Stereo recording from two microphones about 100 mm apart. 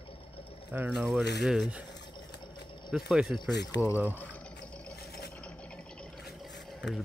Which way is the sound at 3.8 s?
15° right (ahead or behind).